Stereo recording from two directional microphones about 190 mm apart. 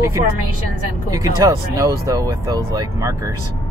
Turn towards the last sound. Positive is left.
turn(degrees=-15)  # may be behind; listen again after turning